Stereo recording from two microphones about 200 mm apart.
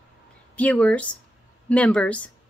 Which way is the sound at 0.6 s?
5° left (ahead or behind).